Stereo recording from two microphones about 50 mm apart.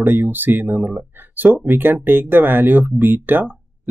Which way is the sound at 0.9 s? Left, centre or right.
Right.